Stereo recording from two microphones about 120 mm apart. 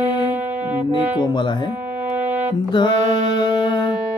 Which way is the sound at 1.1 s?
40° left (ahead or behind).